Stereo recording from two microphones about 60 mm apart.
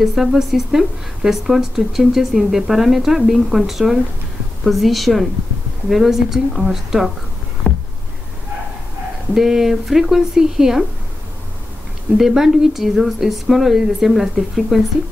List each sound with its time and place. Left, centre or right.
0.0 s a woman's voice: centre
7.7 s a sound: left
9.3 s speech: centre
12.2 s a woman's voice: centre